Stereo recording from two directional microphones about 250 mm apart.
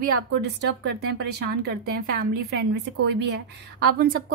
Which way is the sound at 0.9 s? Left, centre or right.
Right.